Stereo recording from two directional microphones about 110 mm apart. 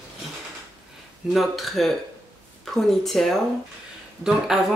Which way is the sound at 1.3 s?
Centre (ahead or behind).